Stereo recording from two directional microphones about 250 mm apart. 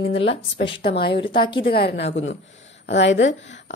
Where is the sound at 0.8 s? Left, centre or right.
Left.